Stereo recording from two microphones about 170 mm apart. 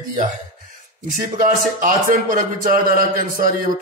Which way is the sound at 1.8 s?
55° right (ahead or behind).